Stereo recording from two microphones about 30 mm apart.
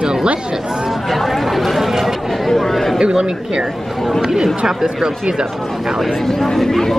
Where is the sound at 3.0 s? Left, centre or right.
Right.